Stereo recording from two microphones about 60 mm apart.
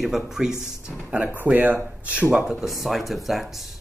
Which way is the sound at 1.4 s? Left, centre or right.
Right.